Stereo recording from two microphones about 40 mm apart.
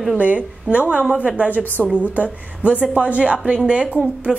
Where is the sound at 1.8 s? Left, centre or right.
Left.